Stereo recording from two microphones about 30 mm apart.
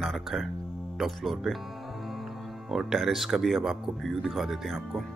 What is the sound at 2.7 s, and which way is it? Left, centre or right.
Speech, centre.